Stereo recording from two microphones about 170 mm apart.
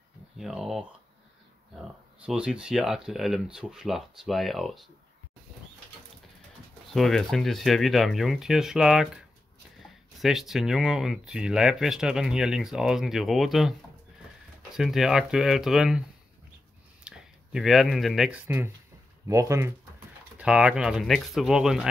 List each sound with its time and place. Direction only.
0.4 s speech: centre (ahead or behind)
6.9 s speech: centre (ahead or behind)
14.8 s speech: centre (ahead or behind)
17.0 s speech: 5° right (ahead or behind)
19.2 s speech: 20° right (ahead or behind)
20.3 s speech: 5° right (ahead or behind)